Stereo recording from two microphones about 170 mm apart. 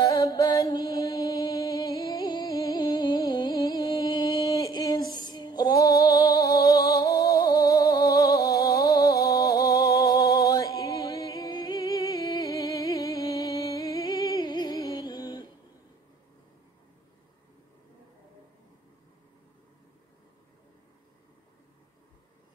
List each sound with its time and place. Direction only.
0.0 s music: 20° left (ahead or behind)